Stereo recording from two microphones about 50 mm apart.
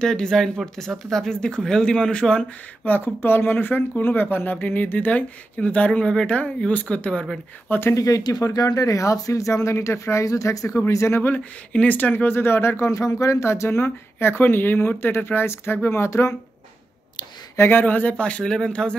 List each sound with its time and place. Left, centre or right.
0.0 s speech: centre
2.8 s speech: left
7.7 s speech: left
8.9 s speech: left
11.1 s speech: left
12.4 s speech: left
17.6 s speech: left; by 18.9 s centre